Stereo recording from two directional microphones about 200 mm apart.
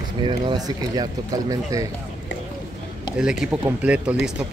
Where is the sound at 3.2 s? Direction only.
5° right (ahead or behind).